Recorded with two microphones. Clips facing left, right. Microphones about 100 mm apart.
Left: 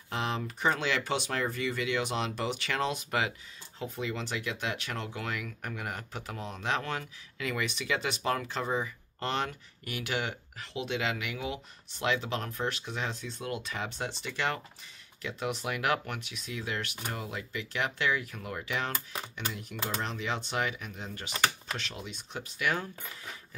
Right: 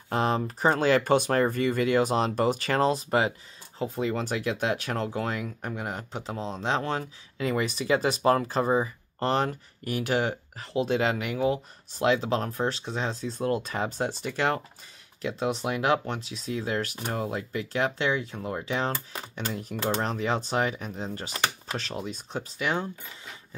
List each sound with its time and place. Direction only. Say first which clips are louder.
0.1 s speech: right 7 dB; 40° right (ahead or behind)